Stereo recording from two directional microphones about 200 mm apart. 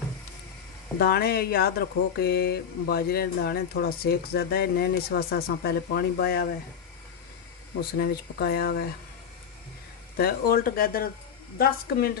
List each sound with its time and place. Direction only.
0.9 s speech: 50° left (ahead or behind)
8.0 s speech: 50° left (ahead or behind)
10.1 s speech: 50° left (ahead or behind)